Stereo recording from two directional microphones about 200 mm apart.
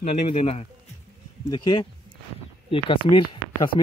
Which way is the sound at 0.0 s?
35° left (ahead or behind).